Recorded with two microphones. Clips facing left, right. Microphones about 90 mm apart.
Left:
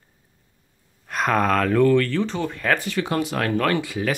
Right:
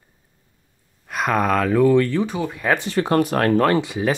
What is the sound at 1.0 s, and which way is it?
Speech, 5° right (ahead or behind).